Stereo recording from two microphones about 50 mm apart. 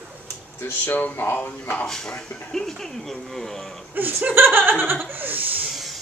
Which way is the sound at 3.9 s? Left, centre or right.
Right.